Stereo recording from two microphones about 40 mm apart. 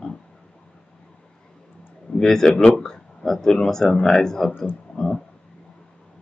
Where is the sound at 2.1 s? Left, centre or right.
Centre.